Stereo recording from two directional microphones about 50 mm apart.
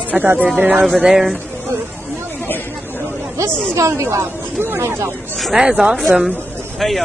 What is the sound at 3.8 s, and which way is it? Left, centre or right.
Speech, right.